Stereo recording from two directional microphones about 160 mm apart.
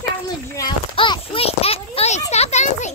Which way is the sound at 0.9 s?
30° left (ahead or behind).